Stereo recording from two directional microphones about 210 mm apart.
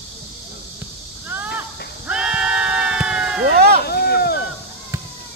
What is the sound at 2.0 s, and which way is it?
Sheep, 5° right (ahead or behind).